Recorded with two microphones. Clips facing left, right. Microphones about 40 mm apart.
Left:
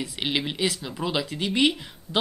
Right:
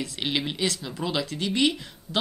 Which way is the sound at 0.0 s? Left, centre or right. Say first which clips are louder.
Left 1 dB; centre.